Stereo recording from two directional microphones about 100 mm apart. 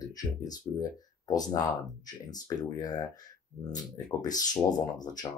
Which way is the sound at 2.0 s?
40° left (ahead or behind).